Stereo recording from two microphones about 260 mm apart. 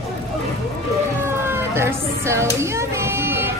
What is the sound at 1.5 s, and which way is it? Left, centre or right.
Child singing, centre.